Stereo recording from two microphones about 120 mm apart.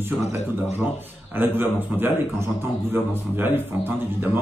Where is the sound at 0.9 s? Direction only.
15° right (ahead or behind).